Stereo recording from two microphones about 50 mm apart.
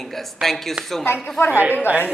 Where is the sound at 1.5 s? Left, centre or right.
Right.